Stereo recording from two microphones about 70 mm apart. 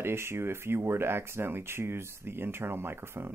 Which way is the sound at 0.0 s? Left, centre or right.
Right.